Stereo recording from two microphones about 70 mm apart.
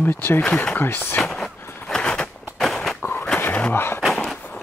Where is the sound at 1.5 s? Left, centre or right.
Left.